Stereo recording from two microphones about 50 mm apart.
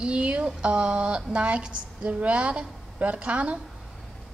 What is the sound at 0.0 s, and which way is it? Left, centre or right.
A woman's voice, right.